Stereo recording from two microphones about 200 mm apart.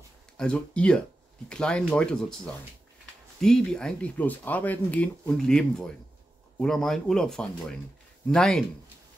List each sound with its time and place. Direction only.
0.4 s speech: 5° left (ahead or behind)